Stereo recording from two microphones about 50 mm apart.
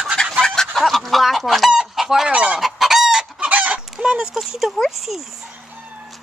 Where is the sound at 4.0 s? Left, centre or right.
Centre.